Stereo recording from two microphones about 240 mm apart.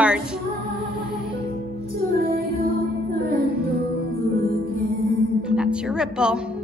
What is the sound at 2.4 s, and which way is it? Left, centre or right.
Music, right.